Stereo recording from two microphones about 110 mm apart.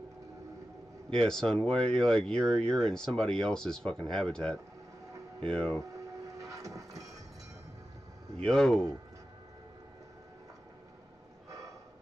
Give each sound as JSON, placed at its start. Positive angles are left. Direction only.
{"t": 1.1, "sound": "speech", "side_deg": 5}
{"t": 6.5, "sound": "train", "side_deg": -30}
{"t": 8.5, "sound": "speech", "side_deg": 5}